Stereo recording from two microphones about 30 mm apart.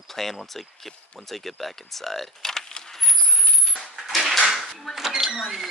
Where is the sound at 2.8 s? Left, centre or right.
Centre.